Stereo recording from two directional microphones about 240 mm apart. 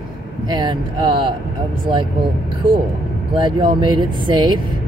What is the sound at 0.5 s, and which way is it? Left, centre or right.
Speech, centre.